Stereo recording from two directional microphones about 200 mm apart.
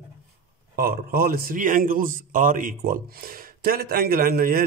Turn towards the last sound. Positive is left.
turn(degrees=-45)  # may be behind; listen again after turning